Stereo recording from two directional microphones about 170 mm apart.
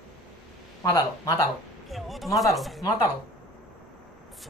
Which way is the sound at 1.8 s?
Centre (ahead or behind).